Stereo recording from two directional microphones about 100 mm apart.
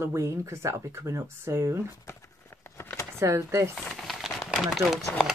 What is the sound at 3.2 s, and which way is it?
Speech, 30° right (ahead or behind).